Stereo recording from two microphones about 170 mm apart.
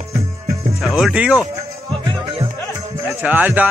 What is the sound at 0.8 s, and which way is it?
Speech, centre (ahead or behind).